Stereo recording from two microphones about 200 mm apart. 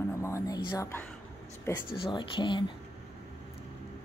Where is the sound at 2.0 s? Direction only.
25° left (ahead or behind).